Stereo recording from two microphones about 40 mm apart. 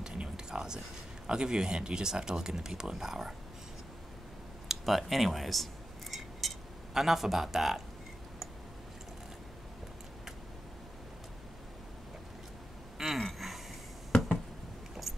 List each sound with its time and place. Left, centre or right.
0.0 s speech: centre
4.6 s a sound: centre
6.9 s a man's voice: centre
12.9 s gasp: centre